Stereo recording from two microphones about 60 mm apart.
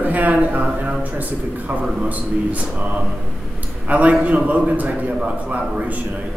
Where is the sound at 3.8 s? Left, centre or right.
Right.